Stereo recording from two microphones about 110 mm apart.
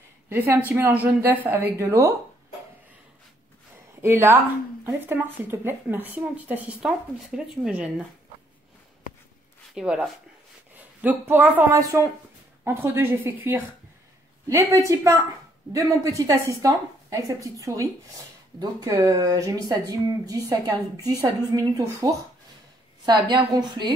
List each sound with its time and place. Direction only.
0.3 s a woman's voice: 20° right (ahead or behind)
4.0 s a woman's voice: 20° right (ahead or behind)
9.8 s a woman's voice: 5° right (ahead or behind); by 23.9 s 40° right (ahead or behind)